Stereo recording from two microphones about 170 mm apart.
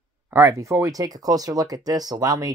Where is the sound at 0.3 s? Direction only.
15° right (ahead or behind).